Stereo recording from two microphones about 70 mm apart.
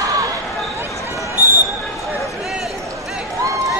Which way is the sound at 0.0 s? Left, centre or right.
Right.